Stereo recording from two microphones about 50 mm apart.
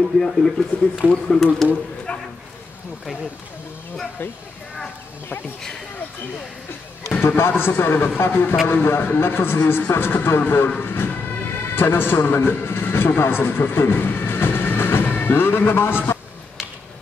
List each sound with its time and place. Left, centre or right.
0.2 s speech: centre
2.1 s a sound: centre
7.2 s speech: left
15.0 s music: left
15.3 s speech: left